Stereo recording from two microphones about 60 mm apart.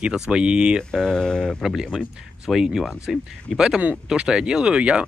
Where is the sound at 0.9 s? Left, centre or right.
Centre.